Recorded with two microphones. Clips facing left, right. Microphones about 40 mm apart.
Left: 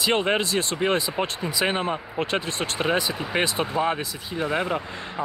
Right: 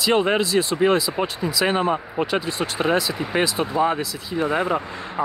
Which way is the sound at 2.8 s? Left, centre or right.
Centre.